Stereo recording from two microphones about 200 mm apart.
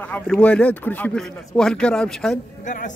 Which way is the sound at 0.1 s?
5° left (ahead or behind).